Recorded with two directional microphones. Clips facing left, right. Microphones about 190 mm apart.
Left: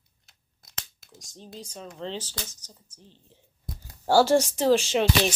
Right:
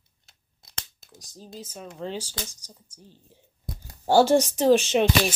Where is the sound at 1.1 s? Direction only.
Centre (ahead or behind); by 5.0 s 20° right (ahead or behind).